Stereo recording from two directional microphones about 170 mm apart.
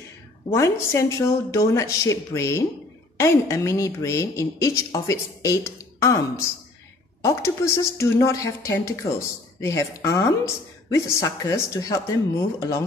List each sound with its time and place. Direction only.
0.5 s a woman's voice: 15° left (ahead or behind)